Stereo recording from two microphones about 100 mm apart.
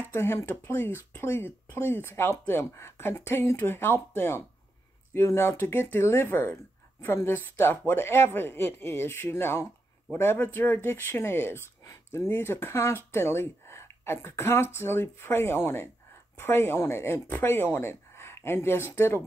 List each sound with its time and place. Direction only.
0.1 s speech: 25° left (ahead or behind)